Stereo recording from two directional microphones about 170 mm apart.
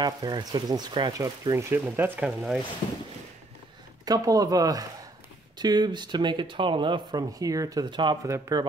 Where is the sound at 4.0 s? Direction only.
20° right (ahead or behind).